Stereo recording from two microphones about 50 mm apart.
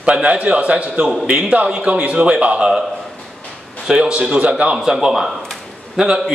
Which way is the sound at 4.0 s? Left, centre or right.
Centre.